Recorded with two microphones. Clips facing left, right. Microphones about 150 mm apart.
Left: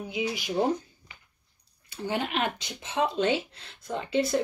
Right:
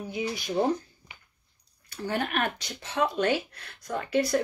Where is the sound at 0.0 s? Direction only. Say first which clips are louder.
Left 1 dB; 15° left (ahead or behind).